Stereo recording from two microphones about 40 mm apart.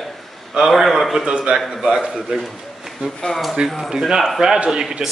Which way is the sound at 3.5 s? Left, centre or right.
Centre.